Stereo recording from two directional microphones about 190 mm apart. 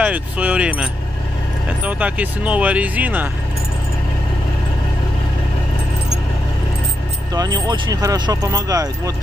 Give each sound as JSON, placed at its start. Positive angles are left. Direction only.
{"t": 0.0, "sound": "speech", "side_deg": -10}
{"t": 7.3, "sound": "speech", "side_deg": -20}